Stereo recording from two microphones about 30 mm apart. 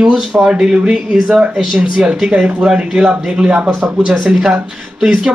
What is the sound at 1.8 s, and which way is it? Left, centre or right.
Speech, right.